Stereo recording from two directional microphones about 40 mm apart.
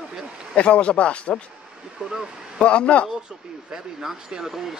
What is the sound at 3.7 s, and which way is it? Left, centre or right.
Speech, centre.